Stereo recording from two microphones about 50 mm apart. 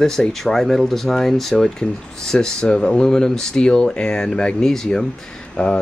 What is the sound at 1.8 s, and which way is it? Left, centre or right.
Speech, centre.